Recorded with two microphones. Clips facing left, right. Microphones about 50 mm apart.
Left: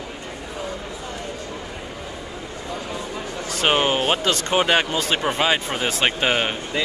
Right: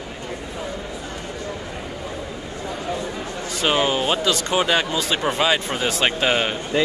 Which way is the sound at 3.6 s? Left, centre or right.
Left.